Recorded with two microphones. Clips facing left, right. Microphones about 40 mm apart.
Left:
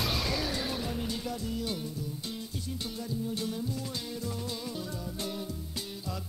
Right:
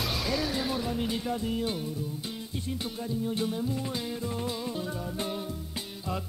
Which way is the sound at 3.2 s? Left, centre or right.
Right.